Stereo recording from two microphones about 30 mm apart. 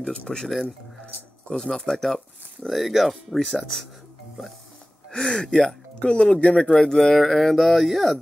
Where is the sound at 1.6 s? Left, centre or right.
Centre.